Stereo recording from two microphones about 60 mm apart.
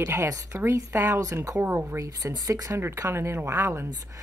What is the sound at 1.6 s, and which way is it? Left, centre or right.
Speech, right.